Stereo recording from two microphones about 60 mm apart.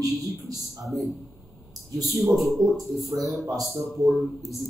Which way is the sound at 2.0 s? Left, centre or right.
Centre.